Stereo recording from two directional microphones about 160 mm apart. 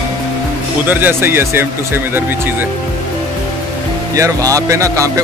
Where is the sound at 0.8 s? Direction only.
15° right (ahead or behind).